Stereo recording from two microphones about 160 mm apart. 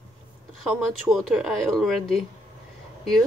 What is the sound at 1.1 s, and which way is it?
Speech, centre (ahead or behind).